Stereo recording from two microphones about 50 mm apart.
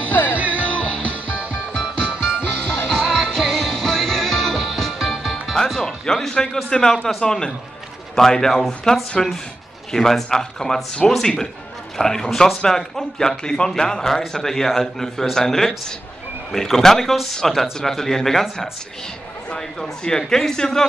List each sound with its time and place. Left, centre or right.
0.3 s music: right
1.7 s music: left; by 5.6 s centre
5.6 s music: centre
6.0 s a sound: centre
6.3 s a man's voice: centre